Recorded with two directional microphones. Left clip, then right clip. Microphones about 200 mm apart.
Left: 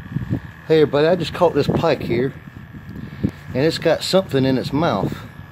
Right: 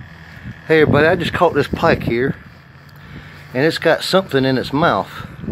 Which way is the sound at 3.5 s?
Centre (ahead or behind).